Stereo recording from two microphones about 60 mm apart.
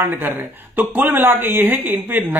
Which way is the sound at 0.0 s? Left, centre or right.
Right.